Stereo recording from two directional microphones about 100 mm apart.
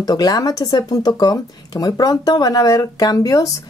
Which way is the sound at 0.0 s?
40° left (ahead or behind).